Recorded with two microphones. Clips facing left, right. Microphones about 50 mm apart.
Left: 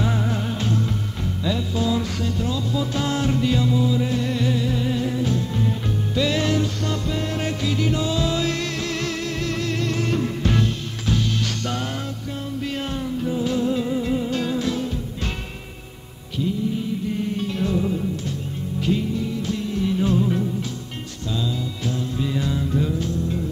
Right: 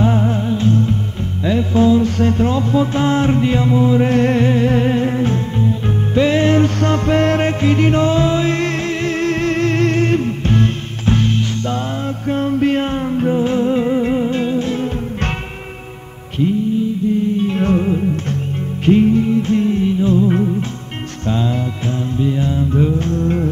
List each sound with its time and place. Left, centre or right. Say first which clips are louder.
0.0 s music: right 7 dB; right
7.4 s music: right 8 dB; right
12.3 s music: right 15 dB; right
17.4 s music: right 7 dB; right
22.2 s mantra: right 7 dB; right
22.9 s music: right 7 dB; right